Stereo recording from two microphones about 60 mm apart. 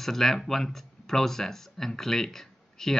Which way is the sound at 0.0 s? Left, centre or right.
Centre.